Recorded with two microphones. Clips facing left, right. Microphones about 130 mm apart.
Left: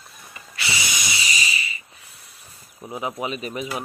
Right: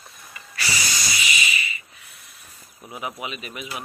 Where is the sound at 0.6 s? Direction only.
25° left (ahead or behind).